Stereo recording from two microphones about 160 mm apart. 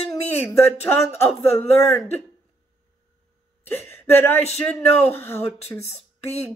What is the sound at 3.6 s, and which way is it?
Speech, 15° left (ahead or behind).